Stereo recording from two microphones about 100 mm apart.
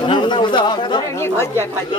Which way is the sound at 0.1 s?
50° left (ahead or behind).